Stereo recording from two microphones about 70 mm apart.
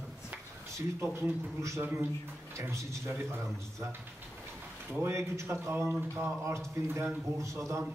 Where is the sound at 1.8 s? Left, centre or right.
Right.